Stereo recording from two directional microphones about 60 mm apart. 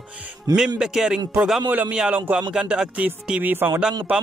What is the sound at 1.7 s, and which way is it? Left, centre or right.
Speech, right.